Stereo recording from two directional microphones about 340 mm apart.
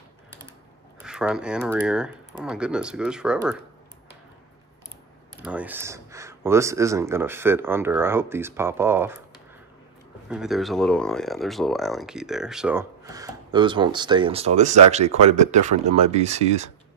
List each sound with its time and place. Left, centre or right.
1.0 s speech: centre
5.4 s speech: centre
10.3 s speech: centre